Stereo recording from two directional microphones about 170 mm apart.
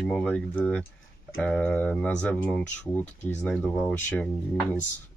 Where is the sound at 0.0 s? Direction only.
5° left (ahead or behind).